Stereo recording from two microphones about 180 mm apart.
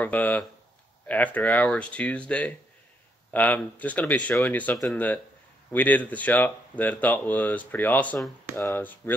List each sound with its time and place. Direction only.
0.0 s speech: 10° left (ahead or behind)